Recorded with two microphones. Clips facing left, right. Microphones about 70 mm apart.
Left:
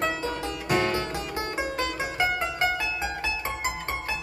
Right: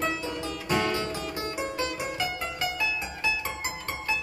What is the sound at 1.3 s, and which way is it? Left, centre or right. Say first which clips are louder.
Music: left 3 dB; left.